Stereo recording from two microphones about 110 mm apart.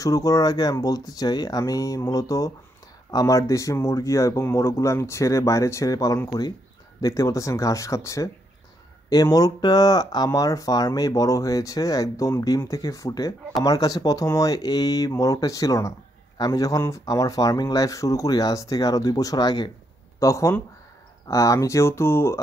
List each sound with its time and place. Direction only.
0.0 s speech: 35° left (ahead or behind)
20.2 s speech: 30° left (ahead or behind)